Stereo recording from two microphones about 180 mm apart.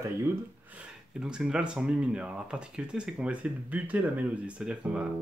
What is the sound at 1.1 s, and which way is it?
Speech, 5° right (ahead or behind).